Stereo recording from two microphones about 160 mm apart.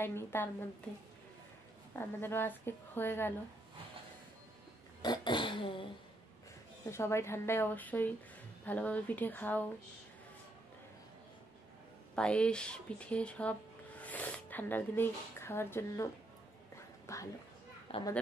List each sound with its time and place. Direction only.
0.0 s a woman's voice: 15° left (ahead or behind)
2.0 s a woman's voice: 15° left (ahead or behind)
5.0 s a sound: 25° left (ahead or behind)
6.9 s a woman's voice: 15° left (ahead or behind)
12.2 s speech: 5° left (ahead or behind)
17.0 s a sound: 20° left (ahead or behind)
17.9 s a child's voice: 35° left (ahead or behind)